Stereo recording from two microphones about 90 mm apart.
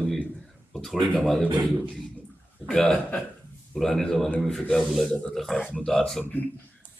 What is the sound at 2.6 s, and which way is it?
A man's voice, 5° left (ahead or behind).